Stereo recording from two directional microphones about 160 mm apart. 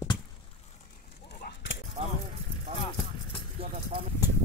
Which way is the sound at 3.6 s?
35° right (ahead or behind).